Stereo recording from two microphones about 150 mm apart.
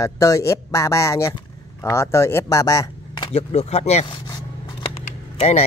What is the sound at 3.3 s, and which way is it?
Speech, 45° left (ahead or behind).